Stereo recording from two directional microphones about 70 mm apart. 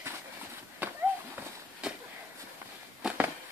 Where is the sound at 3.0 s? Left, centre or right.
Centre.